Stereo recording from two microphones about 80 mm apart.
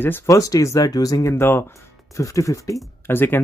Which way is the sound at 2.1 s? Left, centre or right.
Left.